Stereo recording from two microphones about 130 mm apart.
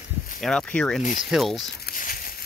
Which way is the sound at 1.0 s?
90° left.